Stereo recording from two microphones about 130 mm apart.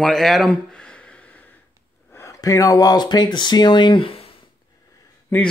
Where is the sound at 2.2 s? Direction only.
25° left (ahead or behind); by 4.3 s 45° left (ahead or behind).